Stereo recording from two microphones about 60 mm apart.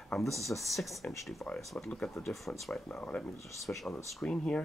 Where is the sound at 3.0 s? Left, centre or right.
Left.